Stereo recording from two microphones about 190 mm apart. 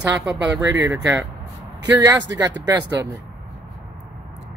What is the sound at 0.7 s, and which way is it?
Speech, 15° right (ahead or behind).